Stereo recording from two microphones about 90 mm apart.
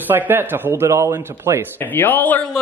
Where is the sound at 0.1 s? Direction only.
20° right (ahead or behind).